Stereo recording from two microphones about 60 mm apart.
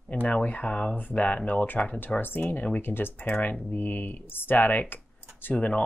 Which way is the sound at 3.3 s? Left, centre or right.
Left.